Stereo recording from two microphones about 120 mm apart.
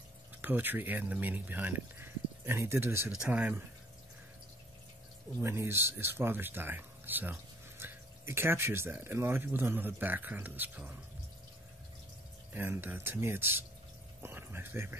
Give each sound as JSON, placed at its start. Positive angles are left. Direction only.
{"t": 0.4, "sound": "speech", "side_deg": -15}
{"t": 3.1, "sound": "speech", "side_deg": -10}
{"t": 5.4, "sound": "speech", "side_deg": -20}
{"t": 12.5, "sound": "speech", "side_deg": -15}